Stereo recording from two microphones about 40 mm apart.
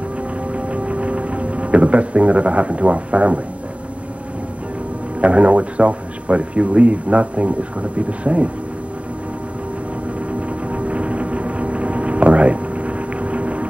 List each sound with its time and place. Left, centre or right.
0.5 s music: right
5.2 s speech: right
10.7 s music: right